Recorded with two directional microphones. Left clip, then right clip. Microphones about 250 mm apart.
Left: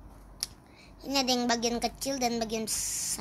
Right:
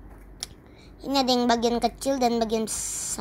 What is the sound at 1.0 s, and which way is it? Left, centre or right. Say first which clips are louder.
A woman's voice: right 5 dB; centre.